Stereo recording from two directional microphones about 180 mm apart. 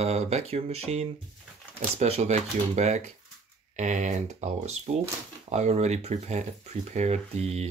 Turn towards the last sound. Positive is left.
turn(degrees=-35)  # may be behind; listen again after turning